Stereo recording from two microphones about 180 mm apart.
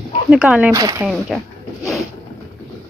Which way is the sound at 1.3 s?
Centre (ahead or behind).